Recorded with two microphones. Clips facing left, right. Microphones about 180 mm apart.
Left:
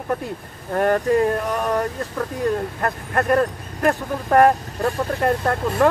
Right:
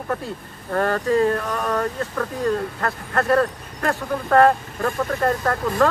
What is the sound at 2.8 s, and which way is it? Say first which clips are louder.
Speech: left 1 dB; 15° left (ahead or behind).